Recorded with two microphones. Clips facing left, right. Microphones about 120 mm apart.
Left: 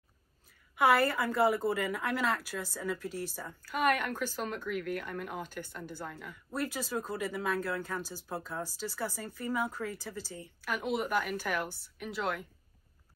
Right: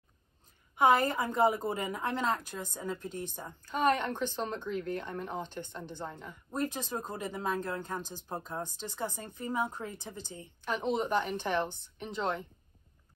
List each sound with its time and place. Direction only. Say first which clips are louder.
0.8 s a woman's voice: right 1 dB; 20° right (ahead or behind)